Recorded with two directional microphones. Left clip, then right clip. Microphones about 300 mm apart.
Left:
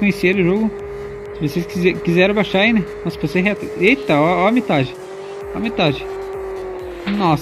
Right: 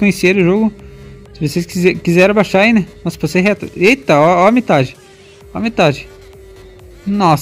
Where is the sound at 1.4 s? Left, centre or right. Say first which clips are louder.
Right 3 dB; left.